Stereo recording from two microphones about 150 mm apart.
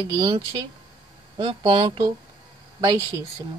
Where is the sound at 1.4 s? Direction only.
35° right (ahead or behind).